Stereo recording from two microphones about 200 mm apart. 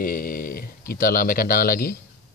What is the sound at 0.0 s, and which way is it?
Speech, 45° left (ahead or behind).